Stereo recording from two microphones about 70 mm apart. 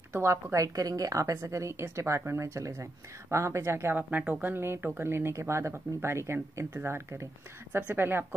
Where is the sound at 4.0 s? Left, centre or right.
Right.